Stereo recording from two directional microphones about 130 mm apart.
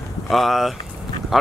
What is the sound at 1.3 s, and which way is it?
Duck, centre (ahead or behind).